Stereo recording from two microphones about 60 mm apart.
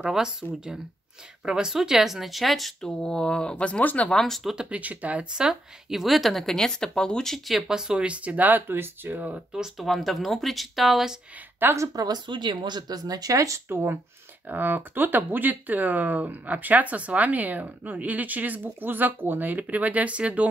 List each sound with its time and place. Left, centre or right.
0.0 s speech: centre; by 4.1 s left
4.1 s speech: centre
4.6 s speech: right
5.3 s speech: centre; by 9.4 s right
9.5 s speech: centre
11.7 s speech: right
12.8 s speech: right
14.5 s speech: right